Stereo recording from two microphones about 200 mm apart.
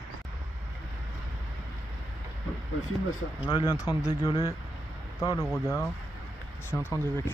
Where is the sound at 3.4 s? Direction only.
20° left (ahead or behind).